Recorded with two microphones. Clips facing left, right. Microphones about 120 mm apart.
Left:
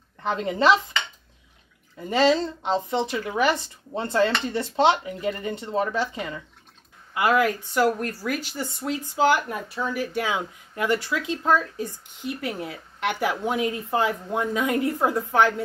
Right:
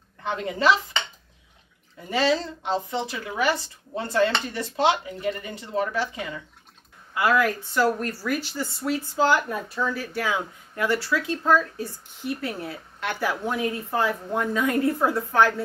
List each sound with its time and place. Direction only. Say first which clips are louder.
0.3 s speech: left 2 dB; 25° left (ahead or behind)
2.0 s speech: left 3 dB; 25° left (ahead or behind)
7.2 s speech: left 1 dB; 20° left (ahead or behind)